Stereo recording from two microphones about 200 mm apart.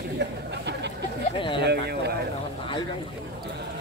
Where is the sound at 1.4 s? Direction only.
25° left (ahead or behind).